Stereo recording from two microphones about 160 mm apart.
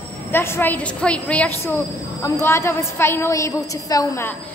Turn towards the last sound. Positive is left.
turn(degrees=20)  # may be behind; listen again after turning